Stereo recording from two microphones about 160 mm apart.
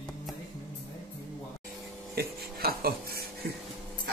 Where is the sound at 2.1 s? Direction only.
75° right (ahead or behind).